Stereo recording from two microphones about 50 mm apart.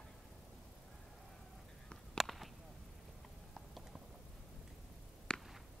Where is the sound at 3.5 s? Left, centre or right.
Centre.